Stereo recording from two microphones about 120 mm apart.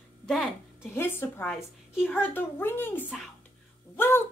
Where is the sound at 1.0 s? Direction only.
20° left (ahead or behind).